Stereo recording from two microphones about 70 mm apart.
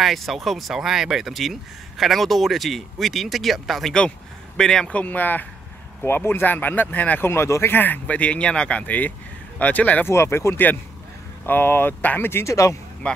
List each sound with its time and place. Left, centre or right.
0.0 s speech: centre
4.8 s speech: left
7.2 s speech: left
7.7 s speech: left
10.0 s speech: left